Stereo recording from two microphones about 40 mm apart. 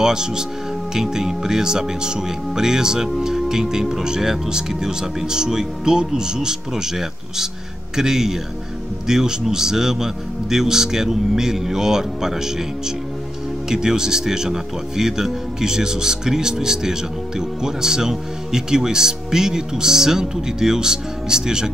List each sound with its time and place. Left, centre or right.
0.0 s speech: centre